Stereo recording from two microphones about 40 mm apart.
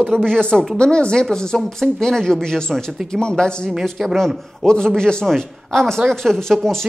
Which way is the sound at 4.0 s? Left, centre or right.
Centre.